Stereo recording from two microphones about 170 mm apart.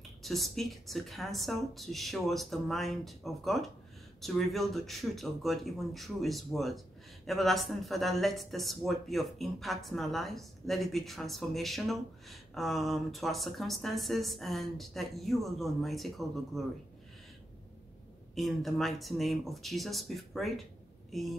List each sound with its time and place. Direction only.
0.2 s speech: centre (ahead or behind)
18.3 s speech: centre (ahead or behind)